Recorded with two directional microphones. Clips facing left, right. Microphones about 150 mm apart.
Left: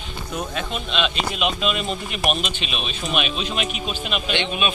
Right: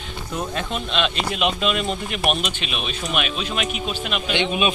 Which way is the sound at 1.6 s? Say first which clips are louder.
Right 2 dB; 15° left (ahead or behind).